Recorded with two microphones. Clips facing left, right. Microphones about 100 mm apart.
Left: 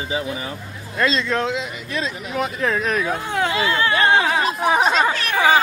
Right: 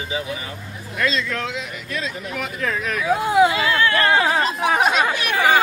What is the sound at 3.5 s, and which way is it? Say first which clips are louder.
Speech: even; 30° left (ahead or behind).